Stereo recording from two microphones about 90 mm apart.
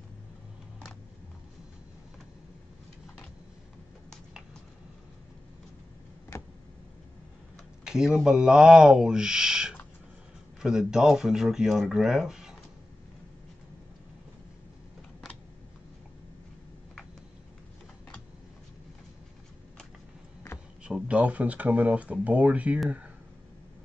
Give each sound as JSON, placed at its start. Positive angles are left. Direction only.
{"t": 6.3, "sound": "a sound", "side_deg": 35}
{"t": 7.8, "sound": "speech", "side_deg": -5}
{"t": 20.8, "sound": "speech", "side_deg": -15}